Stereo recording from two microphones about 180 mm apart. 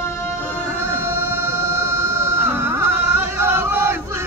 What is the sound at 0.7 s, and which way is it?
Music, 15° right (ahead or behind).